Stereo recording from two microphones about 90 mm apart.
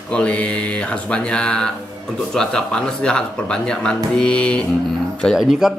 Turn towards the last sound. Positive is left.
turn(degrees=-5)  # may be behind; listen again after turning